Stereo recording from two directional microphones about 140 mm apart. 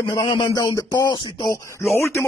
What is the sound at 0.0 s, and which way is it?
Speech, 35° left (ahead or behind).